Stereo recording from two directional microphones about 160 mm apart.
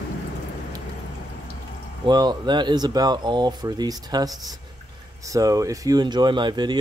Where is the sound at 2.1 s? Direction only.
25° right (ahead or behind).